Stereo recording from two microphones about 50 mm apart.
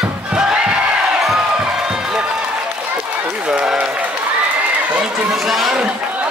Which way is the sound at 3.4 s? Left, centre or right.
Centre.